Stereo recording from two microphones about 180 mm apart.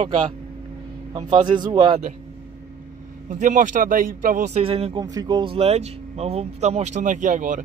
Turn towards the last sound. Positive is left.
turn(degrees=-45)  # may be behind; listen again after turning